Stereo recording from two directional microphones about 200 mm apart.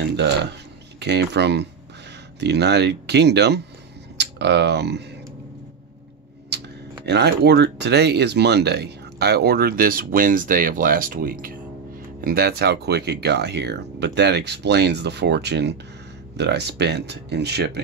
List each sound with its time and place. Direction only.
0.1 s speech: 60° right (ahead or behind)
6.5 s a sound: 55° right (ahead or behind)
7.1 s speech: 55° right (ahead or behind)